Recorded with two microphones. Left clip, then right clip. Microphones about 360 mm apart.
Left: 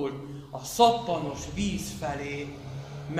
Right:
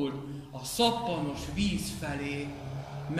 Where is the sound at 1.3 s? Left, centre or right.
Centre.